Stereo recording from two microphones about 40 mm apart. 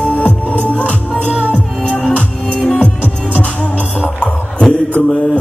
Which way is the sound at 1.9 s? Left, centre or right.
Left.